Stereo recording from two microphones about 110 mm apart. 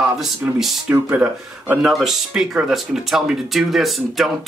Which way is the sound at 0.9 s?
15° right (ahead or behind).